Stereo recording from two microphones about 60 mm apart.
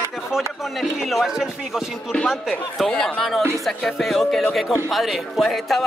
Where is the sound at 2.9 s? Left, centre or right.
Centre.